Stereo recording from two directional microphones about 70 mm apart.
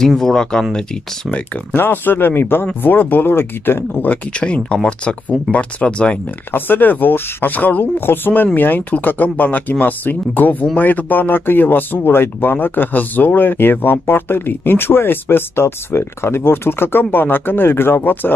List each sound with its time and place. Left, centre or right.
0.0 s speech: centre
1.8 s speech: left; by 6.1 s centre
6.5 s speech: left